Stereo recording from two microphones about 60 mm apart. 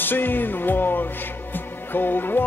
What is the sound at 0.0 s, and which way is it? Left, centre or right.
Music, left.